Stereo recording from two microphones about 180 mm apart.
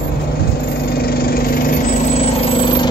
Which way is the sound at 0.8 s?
60° left (ahead or behind).